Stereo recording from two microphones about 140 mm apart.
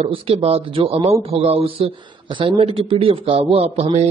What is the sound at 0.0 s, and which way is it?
Speech, 45° right (ahead or behind).